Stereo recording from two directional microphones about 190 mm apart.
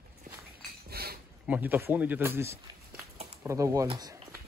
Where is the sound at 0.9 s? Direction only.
55° right (ahead or behind).